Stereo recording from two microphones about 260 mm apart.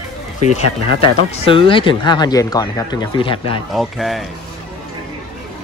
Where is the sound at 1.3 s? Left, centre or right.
Left.